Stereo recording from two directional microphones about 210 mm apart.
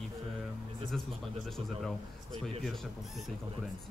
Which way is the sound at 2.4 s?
Centre (ahead or behind).